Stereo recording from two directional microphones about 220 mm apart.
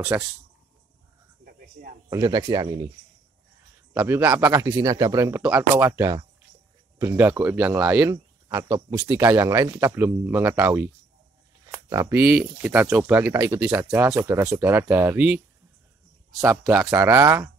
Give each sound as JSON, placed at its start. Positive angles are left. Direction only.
{"t": 0.1, "sound": "speech", "side_deg": -10}
{"t": 1.4, "sound": "a sound", "side_deg": -45}
{"t": 2.0, "sound": "speech", "side_deg": -15}
{"t": 3.9, "sound": "speech", "side_deg": -5}